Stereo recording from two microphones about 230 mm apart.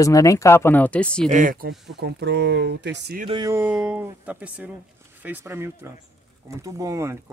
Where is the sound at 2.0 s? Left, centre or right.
Right.